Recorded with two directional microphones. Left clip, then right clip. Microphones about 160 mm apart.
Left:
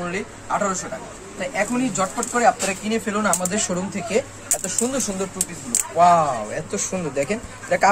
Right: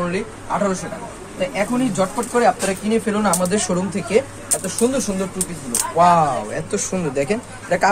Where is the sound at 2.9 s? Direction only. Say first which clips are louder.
Right 3 dB; 20° right (ahead or behind).